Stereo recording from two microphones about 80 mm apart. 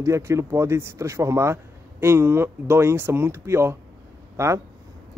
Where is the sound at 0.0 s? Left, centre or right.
Right.